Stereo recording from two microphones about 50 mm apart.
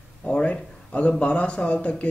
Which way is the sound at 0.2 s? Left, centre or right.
Left.